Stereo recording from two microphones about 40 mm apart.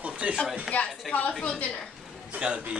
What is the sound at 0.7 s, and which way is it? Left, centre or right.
A woman's voice, left.